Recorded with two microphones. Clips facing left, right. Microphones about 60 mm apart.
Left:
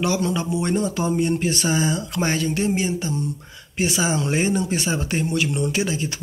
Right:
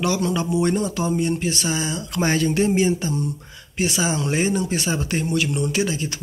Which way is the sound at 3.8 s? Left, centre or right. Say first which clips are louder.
Even; centre.